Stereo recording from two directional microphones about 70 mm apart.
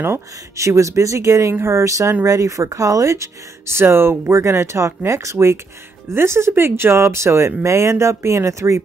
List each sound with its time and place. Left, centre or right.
0.0 s speech: right